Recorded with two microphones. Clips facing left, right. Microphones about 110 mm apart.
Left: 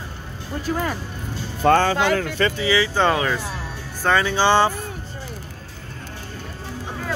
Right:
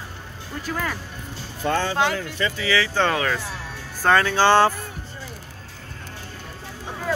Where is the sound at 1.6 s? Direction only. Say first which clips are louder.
Left 5 dB; 60° left (ahead or behind).